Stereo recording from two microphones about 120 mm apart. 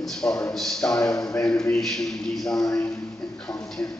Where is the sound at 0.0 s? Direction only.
5° left (ahead or behind).